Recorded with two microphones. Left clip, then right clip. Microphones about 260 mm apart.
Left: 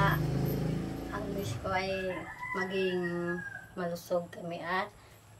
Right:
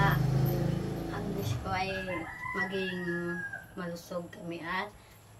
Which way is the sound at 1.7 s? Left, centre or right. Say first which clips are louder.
Left 1 dB; centre.